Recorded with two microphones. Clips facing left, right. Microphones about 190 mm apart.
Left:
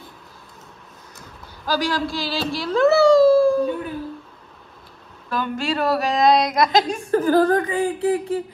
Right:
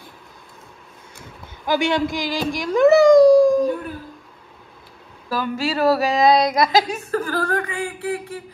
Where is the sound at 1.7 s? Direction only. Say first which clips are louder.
Right 3 dB; 25° right (ahead or behind).